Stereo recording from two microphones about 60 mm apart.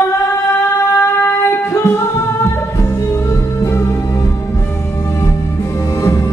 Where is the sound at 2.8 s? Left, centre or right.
Left.